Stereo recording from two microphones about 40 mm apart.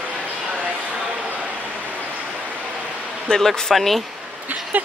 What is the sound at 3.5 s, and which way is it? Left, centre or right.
Speech, centre.